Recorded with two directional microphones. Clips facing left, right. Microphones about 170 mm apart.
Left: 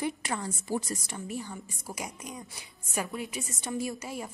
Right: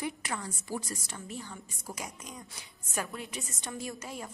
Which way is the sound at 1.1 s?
10° left (ahead or behind).